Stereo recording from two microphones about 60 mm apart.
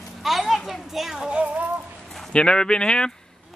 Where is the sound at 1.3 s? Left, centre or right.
Right.